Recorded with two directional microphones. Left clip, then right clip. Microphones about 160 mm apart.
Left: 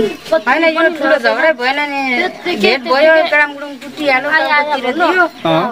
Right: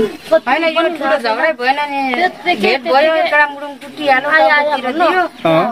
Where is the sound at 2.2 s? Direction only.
15° right (ahead or behind).